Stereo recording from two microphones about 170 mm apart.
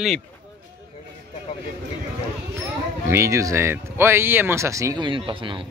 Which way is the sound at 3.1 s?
15° right (ahead or behind).